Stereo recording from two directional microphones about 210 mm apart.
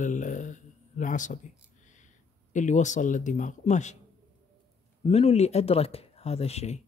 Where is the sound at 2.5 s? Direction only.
35° left (ahead or behind).